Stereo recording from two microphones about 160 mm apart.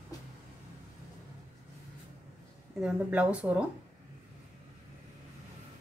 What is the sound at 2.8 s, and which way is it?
Speech, 10° right (ahead or behind).